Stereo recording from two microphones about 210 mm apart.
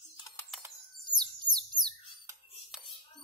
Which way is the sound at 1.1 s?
20° right (ahead or behind).